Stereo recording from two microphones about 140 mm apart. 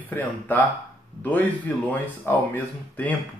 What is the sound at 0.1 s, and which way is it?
Speech, 15° left (ahead or behind).